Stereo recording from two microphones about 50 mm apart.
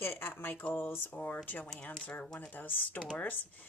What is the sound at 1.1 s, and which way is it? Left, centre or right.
Speech, left.